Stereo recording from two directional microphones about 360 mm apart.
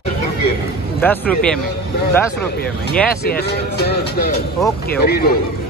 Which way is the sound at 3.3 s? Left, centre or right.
Left.